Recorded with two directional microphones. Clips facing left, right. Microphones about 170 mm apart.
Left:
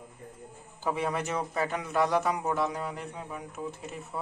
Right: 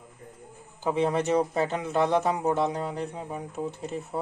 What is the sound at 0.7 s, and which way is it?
A man's voice, 20° right (ahead or behind).